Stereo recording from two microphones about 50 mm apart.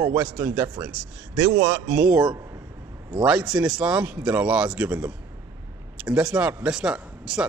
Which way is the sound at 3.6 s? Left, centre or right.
Right.